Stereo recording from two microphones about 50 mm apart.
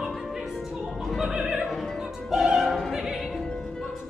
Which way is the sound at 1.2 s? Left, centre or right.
Centre.